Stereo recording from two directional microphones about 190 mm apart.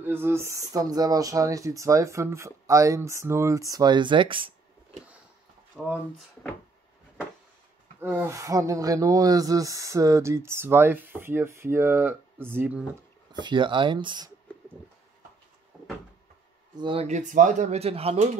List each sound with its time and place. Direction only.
0.0 s speech: 10° right (ahead or behind); by 5.0 s 25° right (ahead or behind)
5.8 s speech: 5° right (ahead or behind)
8.0 s speech: 10° right (ahead or behind)
13.3 s speech: 25° right (ahead or behind)
15.7 s cupboard open or close: centre (ahead or behind)
16.7 s speech: 25° right (ahead or behind)